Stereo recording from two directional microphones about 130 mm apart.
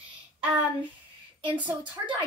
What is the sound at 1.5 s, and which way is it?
Speech, 10° right (ahead or behind).